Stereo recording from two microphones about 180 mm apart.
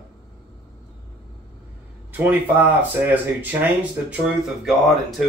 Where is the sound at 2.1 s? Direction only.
10° right (ahead or behind).